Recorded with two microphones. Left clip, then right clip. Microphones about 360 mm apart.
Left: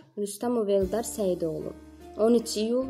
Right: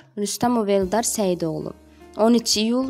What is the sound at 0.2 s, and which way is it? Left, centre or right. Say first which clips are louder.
A woman's voice: right 6 dB; right.